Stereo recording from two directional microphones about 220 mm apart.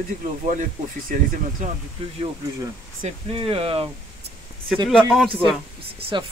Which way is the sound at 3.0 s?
25° right (ahead or behind).